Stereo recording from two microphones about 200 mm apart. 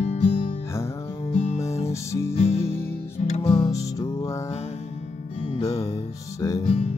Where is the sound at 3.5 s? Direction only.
20° left (ahead or behind).